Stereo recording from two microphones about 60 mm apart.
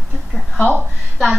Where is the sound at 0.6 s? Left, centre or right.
Left.